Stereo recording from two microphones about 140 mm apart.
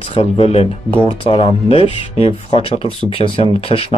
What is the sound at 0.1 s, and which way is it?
Speech, 45° left (ahead or behind).